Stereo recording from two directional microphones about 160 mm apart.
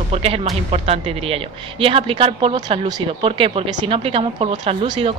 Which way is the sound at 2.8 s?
30° right (ahead or behind).